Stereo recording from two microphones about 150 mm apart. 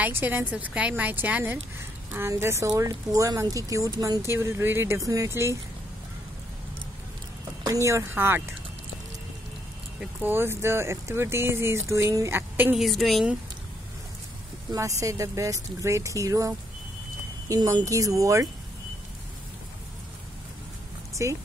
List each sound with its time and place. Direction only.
0.0 s speech: 15° right (ahead or behind)
7.6 s speech: 20° right (ahead or behind)
9.9 s speech: 15° right (ahead or behind)
12.7 s a woman's voice: centre (ahead or behind)
14.7 s speech: 20° right (ahead or behind)
21.2 s speech: 20° right (ahead or behind)